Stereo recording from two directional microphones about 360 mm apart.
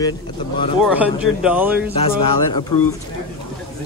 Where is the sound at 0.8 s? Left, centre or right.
Centre.